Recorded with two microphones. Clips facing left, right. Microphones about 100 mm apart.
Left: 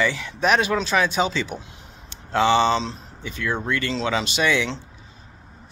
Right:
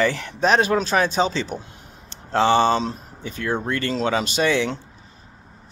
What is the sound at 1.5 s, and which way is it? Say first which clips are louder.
Speech: right 3 dB; 20° left (ahead or behind).